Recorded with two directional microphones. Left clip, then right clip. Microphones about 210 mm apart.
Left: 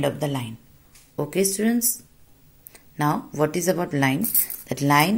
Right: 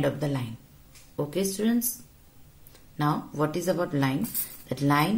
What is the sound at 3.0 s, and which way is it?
Speech, 40° left (ahead or behind).